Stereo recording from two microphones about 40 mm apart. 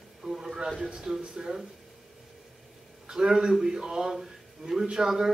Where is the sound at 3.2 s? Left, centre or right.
Centre.